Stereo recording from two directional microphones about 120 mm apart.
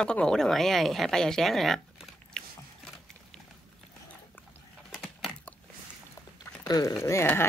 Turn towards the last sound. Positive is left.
turn(degrees=20)  # may be behind; listen again after turning